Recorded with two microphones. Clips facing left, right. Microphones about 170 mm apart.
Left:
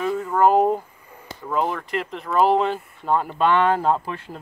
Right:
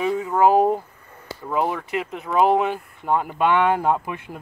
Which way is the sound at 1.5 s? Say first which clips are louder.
Right 1 dB; 5° right (ahead or behind).